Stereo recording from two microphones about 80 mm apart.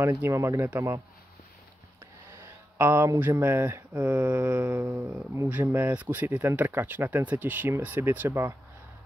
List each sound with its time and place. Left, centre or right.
0.3 s speech: right
2.8 s speech: right
3.2 s mantra: right